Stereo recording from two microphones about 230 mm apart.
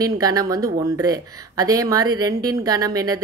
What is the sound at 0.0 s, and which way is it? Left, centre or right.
A woman's voice, centre.